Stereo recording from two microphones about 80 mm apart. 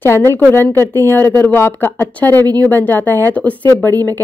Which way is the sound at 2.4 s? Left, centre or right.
Right.